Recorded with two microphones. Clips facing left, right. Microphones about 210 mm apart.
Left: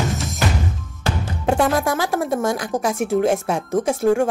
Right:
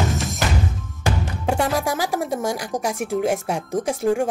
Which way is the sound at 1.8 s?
15° right (ahead or behind).